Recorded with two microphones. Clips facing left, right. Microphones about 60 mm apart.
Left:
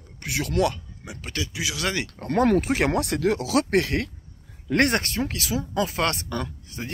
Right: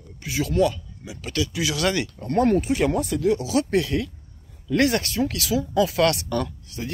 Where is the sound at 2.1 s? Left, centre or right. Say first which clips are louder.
Left 2 dB; left.